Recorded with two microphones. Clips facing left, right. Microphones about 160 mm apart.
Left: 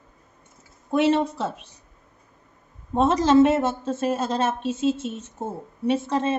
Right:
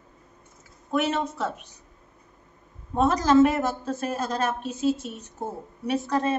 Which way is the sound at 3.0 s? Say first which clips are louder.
Left 2 dB; 25° left (ahead or behind).